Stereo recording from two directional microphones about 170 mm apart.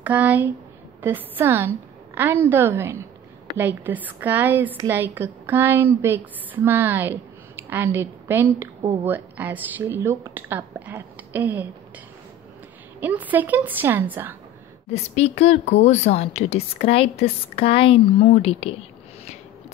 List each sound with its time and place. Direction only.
0.0 s speech: 10° right (ahead or behind)
13.0 s speech: 10° right (ahead or behind)
14.9 s a woman's voice: 40° left (ahead or behind)